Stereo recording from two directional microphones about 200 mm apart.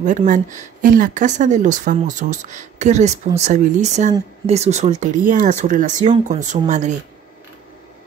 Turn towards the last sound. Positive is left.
turn(degrees=-35)  # may be behind; listen again after turning